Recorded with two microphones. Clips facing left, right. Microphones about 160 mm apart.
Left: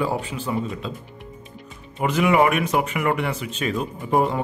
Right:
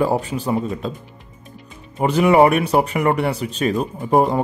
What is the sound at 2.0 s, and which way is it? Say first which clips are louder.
Speech: right 5 dB; 35° right (ahead or behind).